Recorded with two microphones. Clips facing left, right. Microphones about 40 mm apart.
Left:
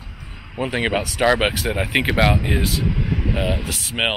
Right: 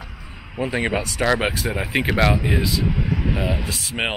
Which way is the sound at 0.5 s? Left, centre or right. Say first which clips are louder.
Left 1 dB; left.